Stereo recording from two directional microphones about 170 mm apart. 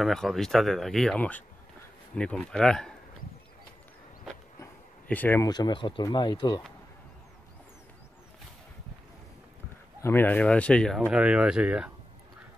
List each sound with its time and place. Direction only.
0.0 s speech: centre (ahead or behind)
4.6 s a sound: 10° left (ahead or behind)
5.5 s speech: 25° left (ahead or behind)
10.0 s speech: 10° left (ahead or behind)
11.1 s speech: 5° right (ahead or behind)